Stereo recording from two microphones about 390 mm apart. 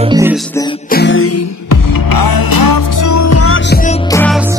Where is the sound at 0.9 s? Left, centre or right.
Left.